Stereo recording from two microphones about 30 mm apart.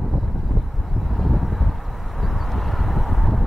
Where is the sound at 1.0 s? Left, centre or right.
Centre.